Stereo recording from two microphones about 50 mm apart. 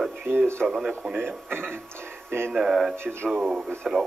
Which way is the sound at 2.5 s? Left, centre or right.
Centre.